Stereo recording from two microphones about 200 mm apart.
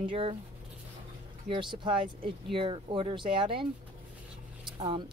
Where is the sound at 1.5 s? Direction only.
25° right (ahead or behind).